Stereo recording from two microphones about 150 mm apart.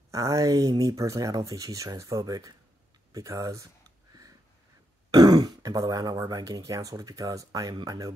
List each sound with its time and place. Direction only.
0.1 s speech: 20° right (ahead or behind)
5.1 s speech: 25° right (ahead or behind)